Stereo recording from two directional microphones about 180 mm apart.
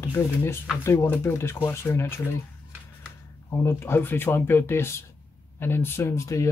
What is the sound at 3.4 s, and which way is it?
Speech, 15° left (ahead or behind).